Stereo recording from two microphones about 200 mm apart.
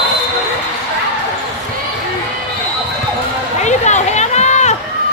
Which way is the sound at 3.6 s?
35° left (ahead or behind).